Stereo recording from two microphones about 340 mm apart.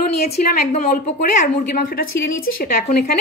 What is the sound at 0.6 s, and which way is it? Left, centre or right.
Speech, left.